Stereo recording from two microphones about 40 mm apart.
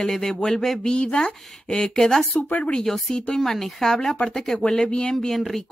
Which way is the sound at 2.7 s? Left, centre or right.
Centre.